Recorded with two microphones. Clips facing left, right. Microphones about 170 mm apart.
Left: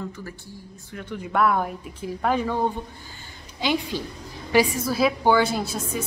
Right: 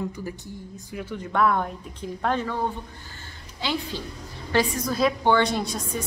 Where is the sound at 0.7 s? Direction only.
10° right (ahead or behind).